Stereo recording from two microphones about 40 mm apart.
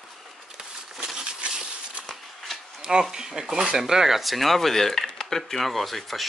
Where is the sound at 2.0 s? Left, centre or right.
Centre.